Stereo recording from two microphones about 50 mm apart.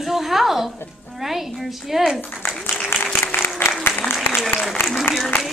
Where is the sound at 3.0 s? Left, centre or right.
Left.